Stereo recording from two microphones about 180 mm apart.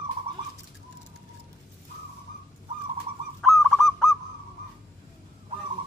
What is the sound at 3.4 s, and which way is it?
Goose, centre (ahead or behind).